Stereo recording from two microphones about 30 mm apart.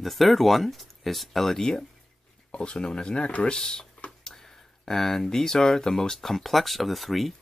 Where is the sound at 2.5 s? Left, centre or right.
Left.